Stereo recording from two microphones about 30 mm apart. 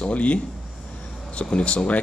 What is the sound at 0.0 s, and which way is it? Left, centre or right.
A man's voice, left.